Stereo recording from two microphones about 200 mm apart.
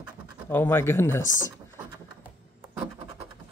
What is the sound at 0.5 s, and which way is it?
Speech, 10° left (ahead or behind).